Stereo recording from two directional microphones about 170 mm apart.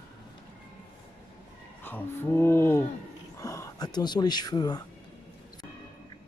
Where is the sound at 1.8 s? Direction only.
15° left (ahead or behind).